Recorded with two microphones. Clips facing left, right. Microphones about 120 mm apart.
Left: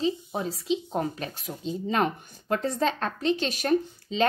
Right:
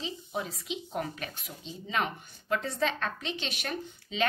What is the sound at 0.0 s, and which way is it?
Speech, 35° left (ahead or behind).